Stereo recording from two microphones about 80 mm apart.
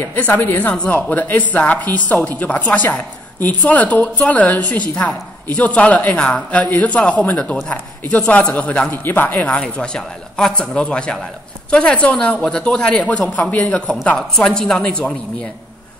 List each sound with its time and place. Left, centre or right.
0.1 s a man's voice: left